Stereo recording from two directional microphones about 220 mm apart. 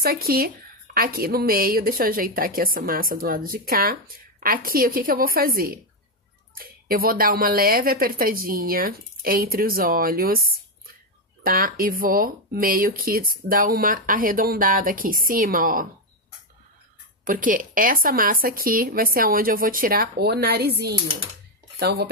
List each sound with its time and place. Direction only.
0.0 s a woman's voice: 45° right (ahead or behind)
17.2 s a woman's voice: 40° right (ahead or behind)